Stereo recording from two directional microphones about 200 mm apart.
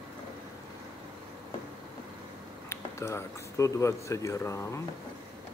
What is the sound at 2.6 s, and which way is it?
Speech, 15° left (ahead or behind).